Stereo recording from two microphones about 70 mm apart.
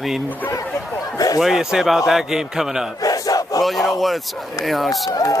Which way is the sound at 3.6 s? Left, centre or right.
Centre.